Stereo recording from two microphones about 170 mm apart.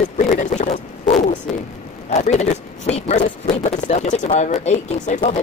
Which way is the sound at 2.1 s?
40° left (ahead or behind).